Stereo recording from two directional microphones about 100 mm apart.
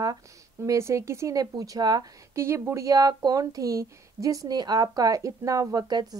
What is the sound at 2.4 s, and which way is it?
Speech, 25° right (ahead or behind).